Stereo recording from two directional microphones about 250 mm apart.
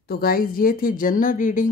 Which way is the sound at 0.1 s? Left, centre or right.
Left.